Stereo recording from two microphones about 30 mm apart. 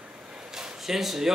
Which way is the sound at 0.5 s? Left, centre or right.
Centre.